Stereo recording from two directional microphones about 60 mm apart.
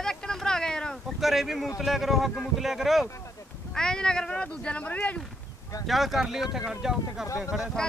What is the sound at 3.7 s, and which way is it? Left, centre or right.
Speech, centre.